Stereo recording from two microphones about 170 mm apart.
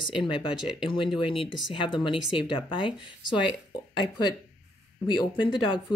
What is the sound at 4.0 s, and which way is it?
Speech, 25° left (ahead or behind).